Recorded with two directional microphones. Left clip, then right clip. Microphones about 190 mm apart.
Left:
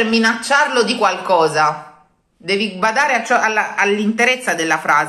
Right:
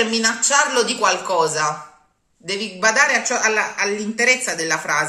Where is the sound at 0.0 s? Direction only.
20° right (ahead or behind).